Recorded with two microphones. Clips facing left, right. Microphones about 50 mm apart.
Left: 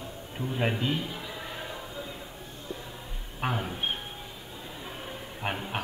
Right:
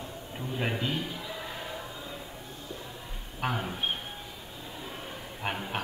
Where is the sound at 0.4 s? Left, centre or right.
Centre.